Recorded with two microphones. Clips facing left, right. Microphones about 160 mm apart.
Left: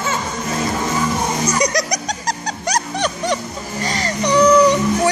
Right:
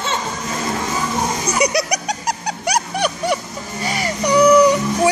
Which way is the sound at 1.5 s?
10° right (ahead or behind).